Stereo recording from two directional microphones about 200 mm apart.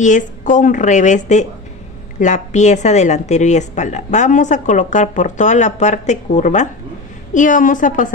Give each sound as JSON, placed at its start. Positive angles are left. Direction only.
{"t": 0.0, "sound": "a woman's voice", "side_deg": 40}